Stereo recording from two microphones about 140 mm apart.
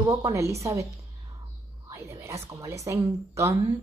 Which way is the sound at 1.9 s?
20° right (ahead or behind).